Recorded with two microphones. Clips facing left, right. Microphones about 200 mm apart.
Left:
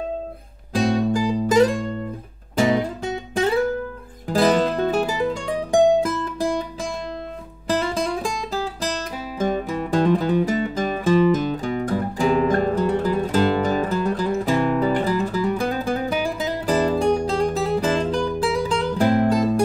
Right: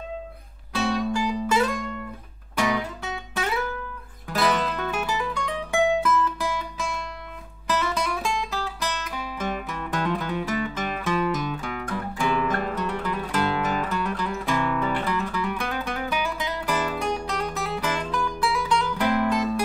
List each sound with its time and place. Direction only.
0.7 s music: 35° left (ahead or behind)
2.6 s guitar: 30° left (ahead or behind)
4.3 s music: 35° left (ahead or behind)
7.6 s music: 30° left (ahead or behind)